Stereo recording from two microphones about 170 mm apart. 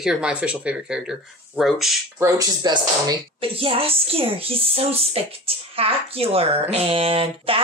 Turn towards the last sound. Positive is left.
turn(degrees=-35)  # may be behind; listen again after turning